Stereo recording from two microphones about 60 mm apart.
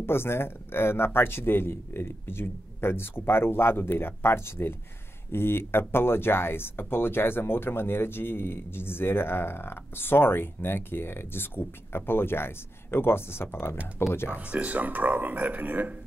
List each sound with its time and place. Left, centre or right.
0.0 s speech: left
14.3 s speech: right